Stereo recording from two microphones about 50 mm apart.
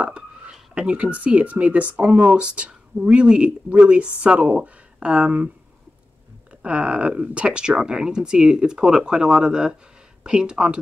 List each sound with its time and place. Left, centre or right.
0.0 s speech: right
6.6 s speech: right